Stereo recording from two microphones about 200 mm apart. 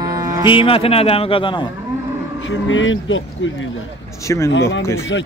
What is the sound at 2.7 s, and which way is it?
Speech, 75° left (ahead or behind).